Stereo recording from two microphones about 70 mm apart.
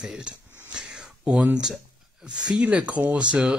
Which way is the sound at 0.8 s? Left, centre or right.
Centre.